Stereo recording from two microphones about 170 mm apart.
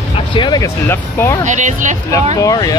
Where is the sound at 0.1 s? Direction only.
30° left (ahead or behind).